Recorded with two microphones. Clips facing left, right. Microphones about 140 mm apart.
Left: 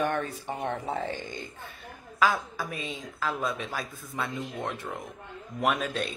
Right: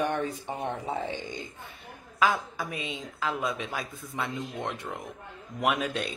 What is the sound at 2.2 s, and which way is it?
A woman's voice, 20° right (ahead or behind).